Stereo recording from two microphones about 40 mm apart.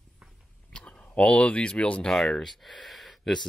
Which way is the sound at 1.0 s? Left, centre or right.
Left.